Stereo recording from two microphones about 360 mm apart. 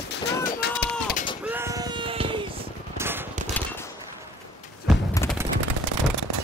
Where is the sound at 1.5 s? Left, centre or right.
Centre.